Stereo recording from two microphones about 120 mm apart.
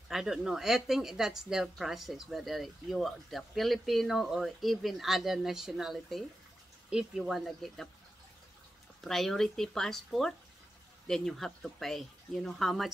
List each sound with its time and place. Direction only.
0.1 s speech: 5° right (ahead or behind)
9.0 s speech: centre (ahead or behind)